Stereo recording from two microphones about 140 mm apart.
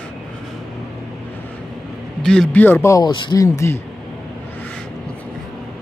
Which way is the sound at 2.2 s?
5° left (ahead or behind).